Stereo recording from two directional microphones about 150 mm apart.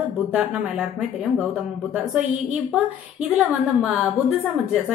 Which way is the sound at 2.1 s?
5° right (ahead or behind).